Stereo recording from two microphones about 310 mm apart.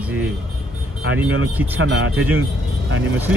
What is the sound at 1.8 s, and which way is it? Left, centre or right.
Speech, right.